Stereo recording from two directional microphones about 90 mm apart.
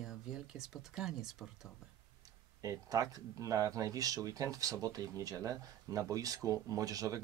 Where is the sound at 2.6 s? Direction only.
40° right (ahead or behind).